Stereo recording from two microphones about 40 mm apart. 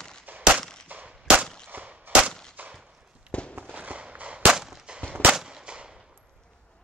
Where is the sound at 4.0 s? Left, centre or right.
Right.